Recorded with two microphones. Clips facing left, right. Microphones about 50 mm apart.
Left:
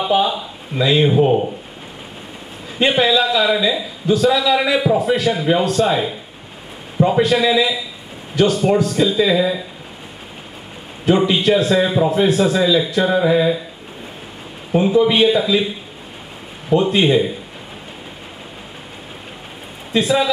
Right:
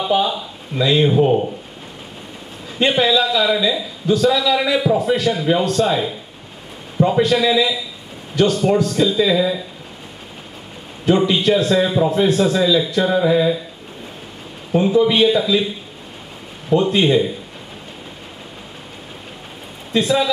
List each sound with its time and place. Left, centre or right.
0.0 s speech: left
2.8 s a man's voice: centre
11.1 s a man's voice: centre
14.7 s a man's voice: centre
19.9 s speech: centre